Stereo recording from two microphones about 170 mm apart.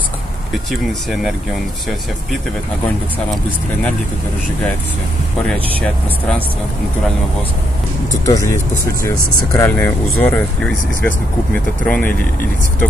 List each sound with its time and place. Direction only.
5.5 s speech: 5° left (ahead or behind)
8.3 s speech: 20° left (ahead or behind)
9.6 s speech: 15° left (ahead or behind)